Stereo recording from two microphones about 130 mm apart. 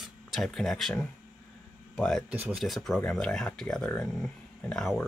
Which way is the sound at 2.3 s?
15° right (ahead or behind).